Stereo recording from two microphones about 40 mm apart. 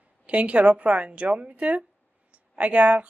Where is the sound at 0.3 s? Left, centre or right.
Right.